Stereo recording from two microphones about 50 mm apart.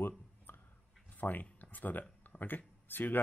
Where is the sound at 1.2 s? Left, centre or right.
Left.